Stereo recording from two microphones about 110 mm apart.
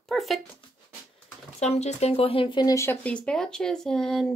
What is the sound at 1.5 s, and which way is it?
Speech, 75° left (ahead or behind).